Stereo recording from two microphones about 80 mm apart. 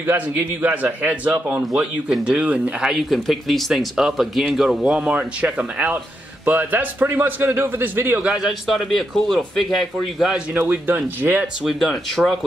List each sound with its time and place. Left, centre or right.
0.0 s a man's voice: right
8.2 s speech: centre
10.5 s a man's voice: right
11.6 s speech: centre